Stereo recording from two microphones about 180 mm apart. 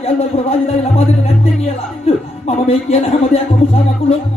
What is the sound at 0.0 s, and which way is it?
Speech, 35° left (ahead or behind).